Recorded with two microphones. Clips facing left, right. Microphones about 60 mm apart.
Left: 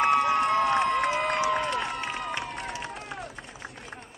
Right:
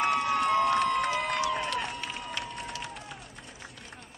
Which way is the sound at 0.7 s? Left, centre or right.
Left.